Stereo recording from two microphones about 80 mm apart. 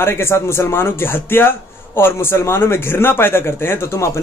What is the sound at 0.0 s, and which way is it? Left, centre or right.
Speech, left.